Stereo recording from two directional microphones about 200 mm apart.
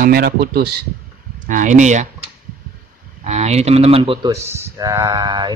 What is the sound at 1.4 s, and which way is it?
Speech, 40° right (ahead or behind).